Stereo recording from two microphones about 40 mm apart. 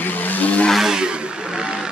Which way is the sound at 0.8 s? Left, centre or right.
Centre.